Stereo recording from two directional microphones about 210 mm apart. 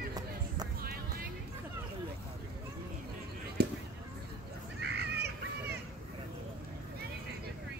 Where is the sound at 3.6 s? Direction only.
50° right (ahead or behind).